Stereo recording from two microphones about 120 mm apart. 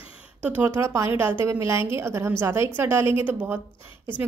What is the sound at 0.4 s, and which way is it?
A woman's voice, 20° right (ahead or behind).